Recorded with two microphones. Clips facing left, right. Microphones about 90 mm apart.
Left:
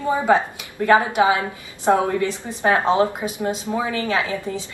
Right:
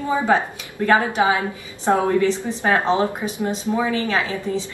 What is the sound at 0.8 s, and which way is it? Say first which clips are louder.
Speech: left 1 dB; 20° left (ahead or behind).